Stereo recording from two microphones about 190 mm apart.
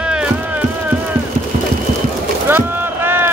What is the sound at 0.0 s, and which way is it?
Music, 5° right (ahead or behind).